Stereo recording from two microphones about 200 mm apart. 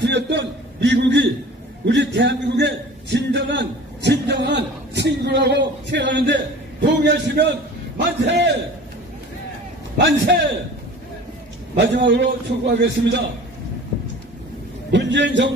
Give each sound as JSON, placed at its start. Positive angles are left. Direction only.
{"t": 0.0, "sound": "a man's voice", "side_deg": -60}
{"t": 9.9, "sound": "a man's voice", "side_deg": -60}
{"t": 11.8, "sound": "a man's voice", "side_deg": -60}
{"t": 14.9, "sound": "a man's voice", "side_deg": -65}